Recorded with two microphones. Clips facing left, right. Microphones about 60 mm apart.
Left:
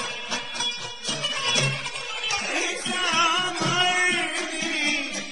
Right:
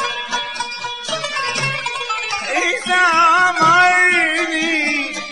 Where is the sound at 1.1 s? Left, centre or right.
Right.